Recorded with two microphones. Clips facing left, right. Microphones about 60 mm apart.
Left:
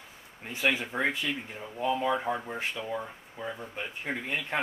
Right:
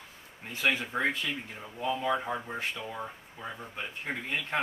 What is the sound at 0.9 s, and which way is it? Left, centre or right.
Speech, centre.